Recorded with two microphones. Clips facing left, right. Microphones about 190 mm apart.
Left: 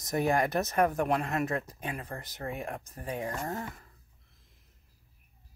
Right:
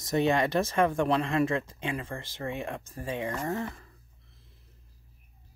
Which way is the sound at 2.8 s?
25° right (ahead or behind).